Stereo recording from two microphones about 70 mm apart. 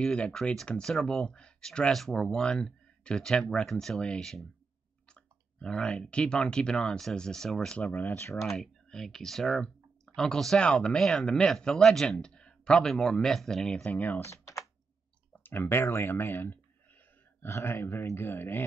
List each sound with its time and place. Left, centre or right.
0.0 s speech: centre
7.8 s speech: left
8.4 s speech: centre
13.8 s speech: left
14.3 s computer keyboard: left
15.3 s speech: left